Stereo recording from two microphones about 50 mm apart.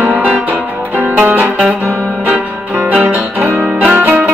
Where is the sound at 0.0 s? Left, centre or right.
Right.